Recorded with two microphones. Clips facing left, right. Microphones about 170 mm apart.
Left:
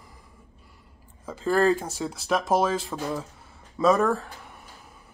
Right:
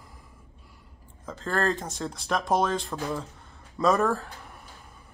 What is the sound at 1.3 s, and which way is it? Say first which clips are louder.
Speech: left 6 dB; 10° left (ahead or behind).